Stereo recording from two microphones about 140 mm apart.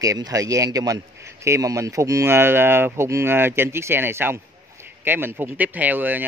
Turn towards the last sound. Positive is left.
turn(degrees=-15)  # may be behind; listen again after turning